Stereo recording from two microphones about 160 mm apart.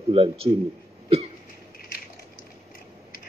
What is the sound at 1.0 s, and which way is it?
Cough, 40° right (ahead or behind).